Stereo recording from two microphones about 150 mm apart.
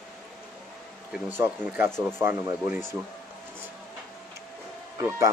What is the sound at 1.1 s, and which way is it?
Speech, 10° right (ahead or behind).